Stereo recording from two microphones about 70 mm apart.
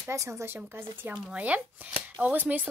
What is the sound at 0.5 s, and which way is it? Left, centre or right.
Speech, right.